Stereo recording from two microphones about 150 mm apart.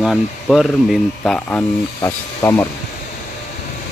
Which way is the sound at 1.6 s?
20° left (ahead or behind).